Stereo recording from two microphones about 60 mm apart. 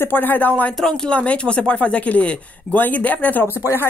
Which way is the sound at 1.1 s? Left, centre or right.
Left.